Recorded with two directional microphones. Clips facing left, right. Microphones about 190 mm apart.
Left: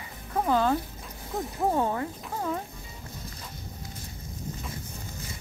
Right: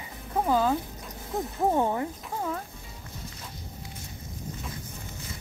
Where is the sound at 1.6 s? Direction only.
15° right (ahead or behind).